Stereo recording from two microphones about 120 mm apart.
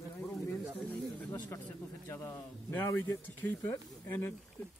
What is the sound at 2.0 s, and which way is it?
Speech, 20° left (ahead or behind).